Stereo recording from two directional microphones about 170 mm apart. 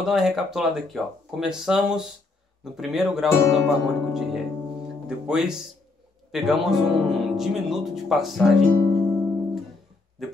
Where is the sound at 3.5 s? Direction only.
Centre (ahead or behind).